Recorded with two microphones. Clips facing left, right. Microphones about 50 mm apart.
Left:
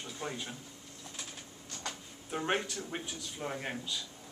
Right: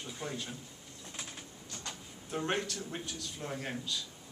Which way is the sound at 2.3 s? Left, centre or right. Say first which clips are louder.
Left 1 dB; centre.